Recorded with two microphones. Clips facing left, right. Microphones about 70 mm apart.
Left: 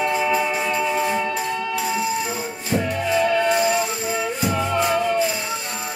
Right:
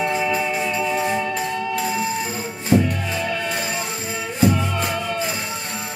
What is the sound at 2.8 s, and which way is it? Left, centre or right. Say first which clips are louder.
Music: left 4 dB; centre.